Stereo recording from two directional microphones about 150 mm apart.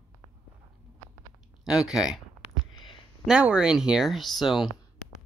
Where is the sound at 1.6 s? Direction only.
5° right (ahead or behind).